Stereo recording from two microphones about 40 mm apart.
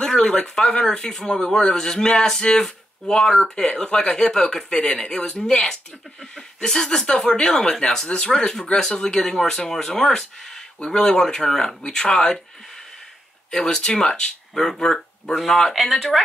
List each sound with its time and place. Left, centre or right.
0.0 s speech: centre
13.5 s speech: centre
15.7 s speech: centre